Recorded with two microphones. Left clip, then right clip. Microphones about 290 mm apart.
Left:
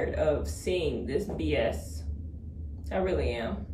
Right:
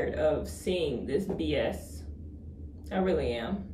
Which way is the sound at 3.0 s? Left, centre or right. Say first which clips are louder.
Right 1 dB; right.